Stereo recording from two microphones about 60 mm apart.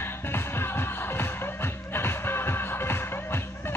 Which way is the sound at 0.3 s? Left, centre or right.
Left.